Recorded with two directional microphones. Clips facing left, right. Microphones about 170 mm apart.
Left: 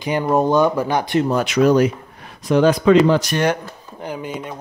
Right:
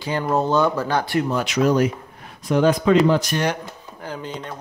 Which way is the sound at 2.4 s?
80° left.